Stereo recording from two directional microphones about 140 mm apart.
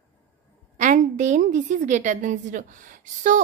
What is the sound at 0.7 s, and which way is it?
A woman's voice, 65° right (ahead or behind).